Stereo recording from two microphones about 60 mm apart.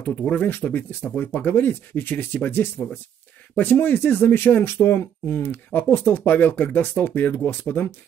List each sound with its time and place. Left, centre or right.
0.0 s speech: left